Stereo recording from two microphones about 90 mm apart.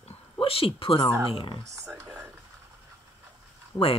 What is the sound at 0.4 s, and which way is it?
Speech, 90° left.